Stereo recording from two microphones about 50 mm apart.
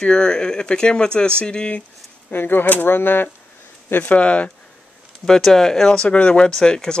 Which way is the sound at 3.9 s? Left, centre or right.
Left.